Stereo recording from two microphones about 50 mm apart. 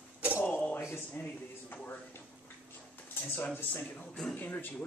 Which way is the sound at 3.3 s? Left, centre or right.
Left.